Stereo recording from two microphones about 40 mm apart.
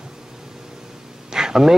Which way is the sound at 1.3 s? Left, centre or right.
Centre.